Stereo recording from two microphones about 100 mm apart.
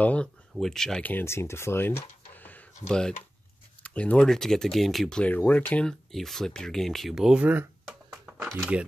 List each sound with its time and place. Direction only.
0.0 s speech: 15° left (ahead or behind)
1.0 s speech: 20° left (ahead or behind)
2.3 s computer keyboard: 15° left (ahead or behind)
3.8 s a sound: 15° left (ahead or behind)
4.2 s speech: 5° left (ahead or behind); by 7.6 s 15° right (ahead or behind)
8.1 s a sound: 10° right (ahead or behind)
8.7 s speech: 10° right (ahead or behind)